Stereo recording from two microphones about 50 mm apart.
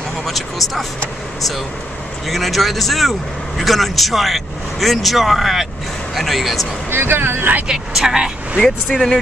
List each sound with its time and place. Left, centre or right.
0.2 s speech: centre
2.2 s speech: centre
6.9 s speech: right
7.6 s speech: centre
8.6 s speech: centre